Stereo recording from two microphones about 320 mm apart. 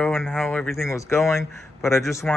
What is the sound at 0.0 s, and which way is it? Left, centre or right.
Speech, centre.